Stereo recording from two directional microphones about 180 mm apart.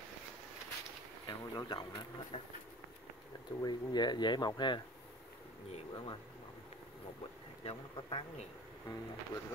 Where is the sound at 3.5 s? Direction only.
25° left (ahead or behind).